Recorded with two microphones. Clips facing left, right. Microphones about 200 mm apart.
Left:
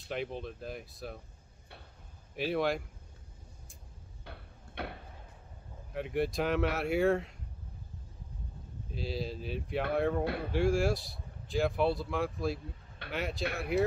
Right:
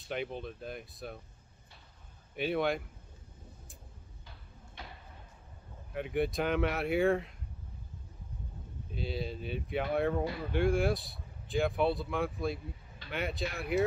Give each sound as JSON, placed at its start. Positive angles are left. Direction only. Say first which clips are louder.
{"t": 0.0, "sound": "speech", "louder": "even", "side_deg": 0}
{"t": 2.3, "sound": "speech", "louder": "even", "side_deg": 0}
{"t": 4.2, "sound": "a sound", "louder": "left 8 dB", "side_deg": 65}
{"t": 5.9, "sound": "speech", "louder": "even", "side_deg": 0}
{"t": 8.9, "sound": "speech", "louder": "even", "side_deg": 0}